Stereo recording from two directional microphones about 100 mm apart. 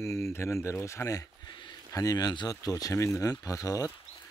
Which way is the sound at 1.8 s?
35° left (ahead or behind).